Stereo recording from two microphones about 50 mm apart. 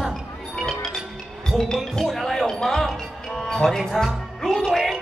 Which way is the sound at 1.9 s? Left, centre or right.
Centre.